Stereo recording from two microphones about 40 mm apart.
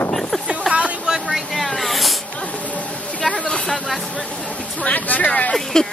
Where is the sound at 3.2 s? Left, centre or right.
Left.